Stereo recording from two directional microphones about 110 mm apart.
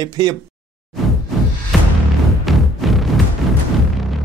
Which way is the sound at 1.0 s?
Centre (ahead or behind).